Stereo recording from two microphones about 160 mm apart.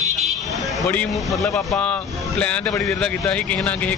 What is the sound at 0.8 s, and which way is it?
Speech, 15° left (ahead or behind).